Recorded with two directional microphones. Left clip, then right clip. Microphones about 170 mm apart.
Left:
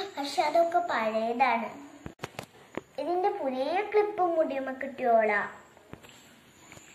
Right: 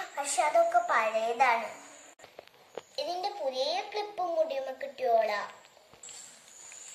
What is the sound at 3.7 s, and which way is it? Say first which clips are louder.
A woman's voice: left 7 dB; 15° left (ahead or behind).